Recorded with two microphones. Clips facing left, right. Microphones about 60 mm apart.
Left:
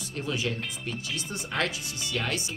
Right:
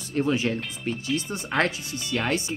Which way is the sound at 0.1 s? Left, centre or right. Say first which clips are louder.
Right 7 dB; right.